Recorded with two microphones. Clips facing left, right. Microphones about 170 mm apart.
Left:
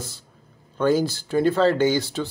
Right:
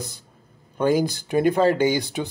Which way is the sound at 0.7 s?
15° right (ahead or behind).